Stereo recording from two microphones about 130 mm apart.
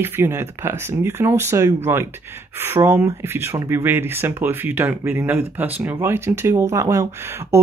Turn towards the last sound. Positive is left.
turn(degrees=-20)  # may be behind; listen again after turning